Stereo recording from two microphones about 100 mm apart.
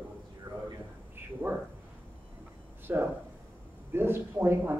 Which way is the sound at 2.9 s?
20° right (ahead or behind).